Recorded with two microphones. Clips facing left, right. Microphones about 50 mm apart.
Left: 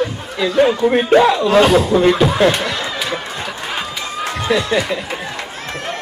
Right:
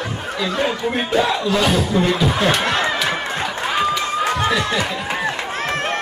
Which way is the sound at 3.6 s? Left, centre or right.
Centre.